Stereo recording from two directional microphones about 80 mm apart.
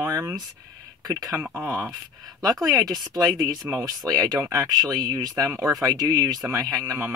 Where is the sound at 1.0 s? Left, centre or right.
Right.